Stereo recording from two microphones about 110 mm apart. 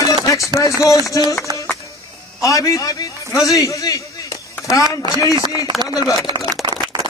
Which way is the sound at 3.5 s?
30° left (ahead or behind).